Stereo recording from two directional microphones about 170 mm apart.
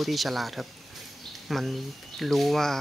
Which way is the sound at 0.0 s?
Centre (ahead or behind).